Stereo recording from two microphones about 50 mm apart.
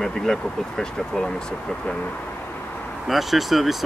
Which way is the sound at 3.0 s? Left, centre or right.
Centre.